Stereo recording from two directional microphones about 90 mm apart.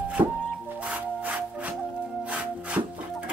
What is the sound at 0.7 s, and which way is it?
Music, 15° right (ahead or behind).